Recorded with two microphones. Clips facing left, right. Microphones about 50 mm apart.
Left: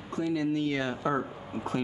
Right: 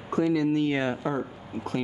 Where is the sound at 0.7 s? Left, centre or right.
Right.